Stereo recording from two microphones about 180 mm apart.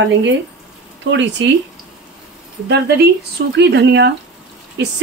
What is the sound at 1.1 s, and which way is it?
Speech, 80° right.